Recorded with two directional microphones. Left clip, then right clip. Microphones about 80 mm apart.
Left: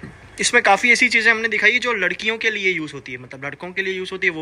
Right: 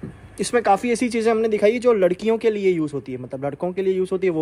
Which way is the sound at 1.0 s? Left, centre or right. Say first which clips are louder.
Left 4 dB; right.